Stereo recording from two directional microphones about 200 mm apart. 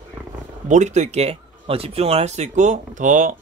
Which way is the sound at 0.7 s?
35° right (ahead or behind).